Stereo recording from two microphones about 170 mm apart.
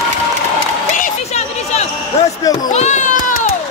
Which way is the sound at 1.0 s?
40° left (ahead or behind).